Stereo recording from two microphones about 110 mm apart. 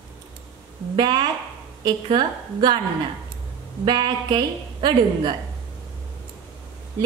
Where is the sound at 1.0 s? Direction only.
40° right (ahead or behind).